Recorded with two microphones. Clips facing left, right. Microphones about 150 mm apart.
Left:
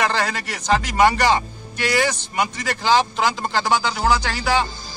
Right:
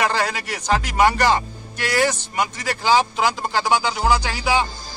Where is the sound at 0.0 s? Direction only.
5° right (ahead or behind).